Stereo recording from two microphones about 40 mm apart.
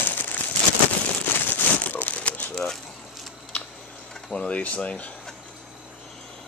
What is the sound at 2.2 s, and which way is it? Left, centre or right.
Crumpling, left.